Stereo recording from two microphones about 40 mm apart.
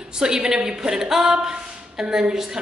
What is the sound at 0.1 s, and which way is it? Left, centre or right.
A woman's voice, centre.